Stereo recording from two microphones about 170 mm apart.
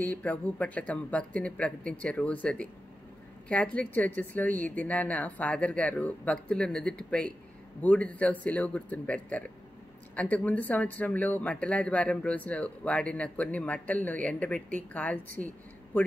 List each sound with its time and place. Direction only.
0.0 s a woman's voice: 10° left (ahead or behind)